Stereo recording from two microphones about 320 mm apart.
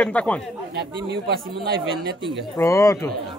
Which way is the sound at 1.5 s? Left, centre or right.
Right.